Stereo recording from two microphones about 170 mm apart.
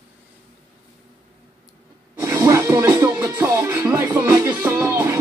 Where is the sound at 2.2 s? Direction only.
20° right (ahead or behind).